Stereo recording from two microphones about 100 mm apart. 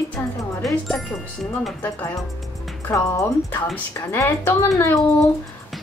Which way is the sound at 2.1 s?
Centre (ahead or behind).